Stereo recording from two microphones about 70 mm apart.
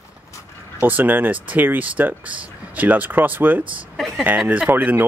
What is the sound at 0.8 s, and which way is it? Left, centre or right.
Speech, right.